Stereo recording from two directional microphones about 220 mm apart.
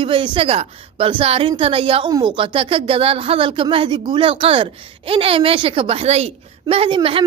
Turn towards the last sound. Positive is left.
turn(degrees=-25)  # may be behind; listen again after turning